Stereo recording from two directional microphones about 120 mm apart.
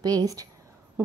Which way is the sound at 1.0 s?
20° right (ahead or behind).